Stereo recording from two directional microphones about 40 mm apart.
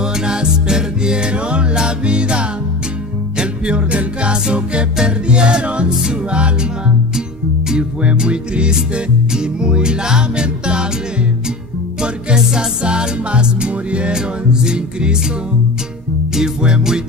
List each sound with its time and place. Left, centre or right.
0.0 s music: centre
7.2 s music: centre
8.0 s music: right
12.0 s music: right
14.1 s music: centre
16.3 s music: centre